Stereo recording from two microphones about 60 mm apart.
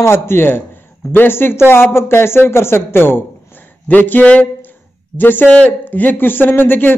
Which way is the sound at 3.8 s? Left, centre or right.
Left.